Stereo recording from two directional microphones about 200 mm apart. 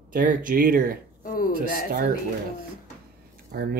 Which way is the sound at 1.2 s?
45° left (ahead or behind).